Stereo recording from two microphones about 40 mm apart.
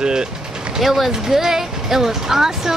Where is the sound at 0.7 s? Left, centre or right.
Centre.